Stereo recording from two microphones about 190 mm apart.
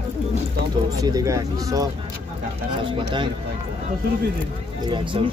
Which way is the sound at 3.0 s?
25° right (ahead or behind).